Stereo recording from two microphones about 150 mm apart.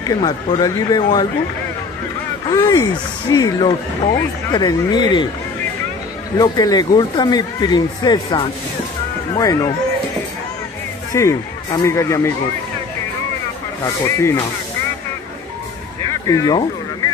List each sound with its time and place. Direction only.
0.0 s a man's voice: 25° left (ahead or behind)
2.5 s a man's voice: 25° left (ahead or behind)
6.3 s a man's voice: 25° left (ahead or behind)
11.1 s a man's voice: 20° left (ahead or behind)
13.8 s speech: 20° left (ahead or behind)
16.3 s speech: 25° left (ahead or behind)